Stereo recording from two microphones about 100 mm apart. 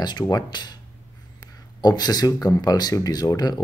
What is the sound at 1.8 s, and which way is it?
Speech, 40° left (ahead or behind).